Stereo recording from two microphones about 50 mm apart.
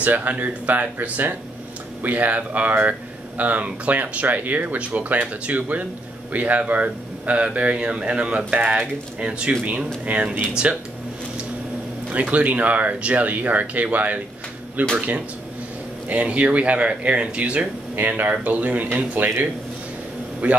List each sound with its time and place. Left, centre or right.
0.0 s speech: right
12.1 s speech: right
17.9 s speech: right
20.4 s speech: right